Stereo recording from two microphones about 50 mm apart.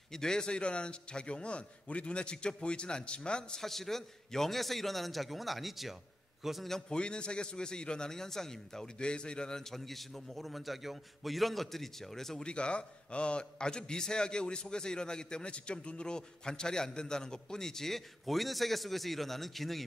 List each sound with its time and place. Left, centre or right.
0.1 s a man's voice: centre
3.6 s a man's voice: centre
6.7 s a man's voice: centre
12.4 s a man's voice: left; by 19.8 s centre